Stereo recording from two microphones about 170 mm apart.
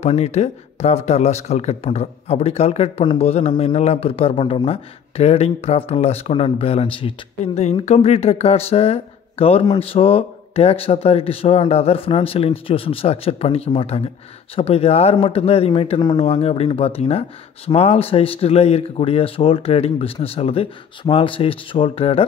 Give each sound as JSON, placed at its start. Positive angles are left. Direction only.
{"t": 0.0, "sound": "speech", "side_deg": 40}